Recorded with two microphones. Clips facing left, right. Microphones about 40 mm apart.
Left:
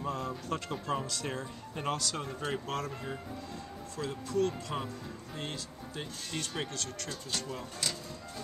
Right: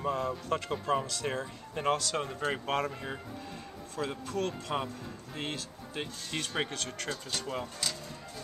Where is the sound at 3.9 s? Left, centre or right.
Right.